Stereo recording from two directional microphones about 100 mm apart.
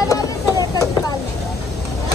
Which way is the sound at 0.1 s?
35° left (ahead or behind).